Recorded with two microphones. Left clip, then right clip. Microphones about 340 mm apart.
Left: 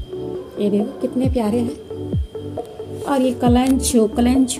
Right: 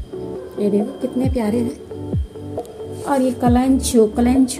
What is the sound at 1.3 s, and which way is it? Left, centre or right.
Speech, centre.